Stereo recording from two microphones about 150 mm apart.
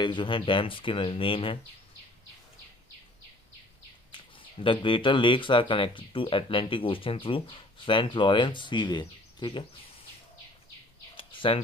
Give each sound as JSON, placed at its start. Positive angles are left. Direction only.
{"t": 0.0, "sound": "speech", "side_deg": 30}
{"t": 4.1, "sound": "speech", "side_deg": 35}
{"t": 11.1, "sound": "a sound", "side_deg": 35}